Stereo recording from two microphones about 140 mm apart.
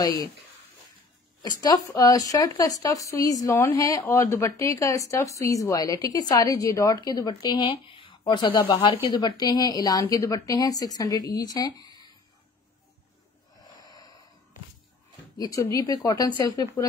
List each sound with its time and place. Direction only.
1.4 s speech: 30° left (ahead or behind)
13.6 s snort: 25° left (ahead or behind)
15.3 s speech: 25° left (ahead or behind)